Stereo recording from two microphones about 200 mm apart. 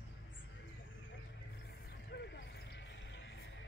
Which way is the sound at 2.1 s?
60° left (ahead or behind).